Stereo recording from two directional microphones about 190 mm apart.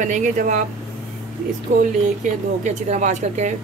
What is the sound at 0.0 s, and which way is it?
Speech, 40° right (ahead or behind).